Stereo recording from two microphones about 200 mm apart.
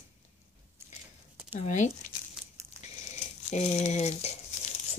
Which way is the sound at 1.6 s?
35° left (ahead or behind).